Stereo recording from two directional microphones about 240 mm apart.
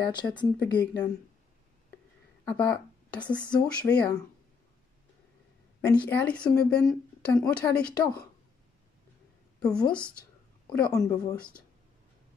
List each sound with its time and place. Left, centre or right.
0.0 s speech: centre
2.4 s a sound: centre
3.6 s speech: centre
5.8 s a woman's voice: centre
9.6 s a woman's voice: centre